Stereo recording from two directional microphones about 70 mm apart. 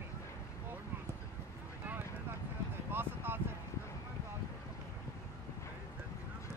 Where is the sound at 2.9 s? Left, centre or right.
Right.